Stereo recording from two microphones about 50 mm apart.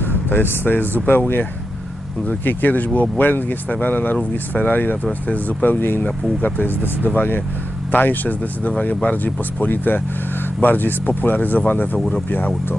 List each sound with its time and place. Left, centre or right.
0.3 s speech: left